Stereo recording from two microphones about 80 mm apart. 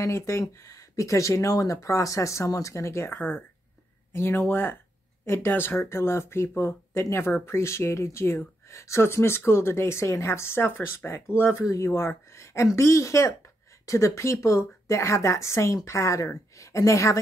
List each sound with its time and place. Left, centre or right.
0.0 s speech: left